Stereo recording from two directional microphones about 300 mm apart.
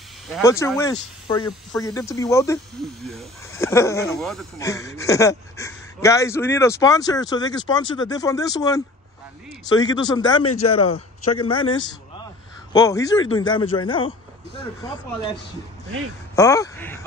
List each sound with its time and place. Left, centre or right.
0.3 s speech: centre
12.7 s speech: centre
16.3 s speech: centre